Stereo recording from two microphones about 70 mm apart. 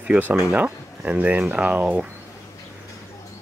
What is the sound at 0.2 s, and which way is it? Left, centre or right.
Speech, right.